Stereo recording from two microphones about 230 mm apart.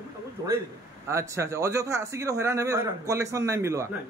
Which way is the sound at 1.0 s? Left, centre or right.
Centre.